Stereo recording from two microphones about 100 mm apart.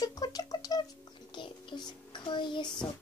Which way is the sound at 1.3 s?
50° left (ahead or behind).